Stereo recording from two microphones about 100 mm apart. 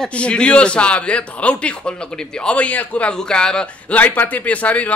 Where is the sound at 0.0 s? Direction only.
10° left (ahead or behind).